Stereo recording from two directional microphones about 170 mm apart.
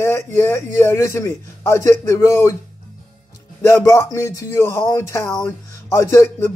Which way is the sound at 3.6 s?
15° left (ahead or behind).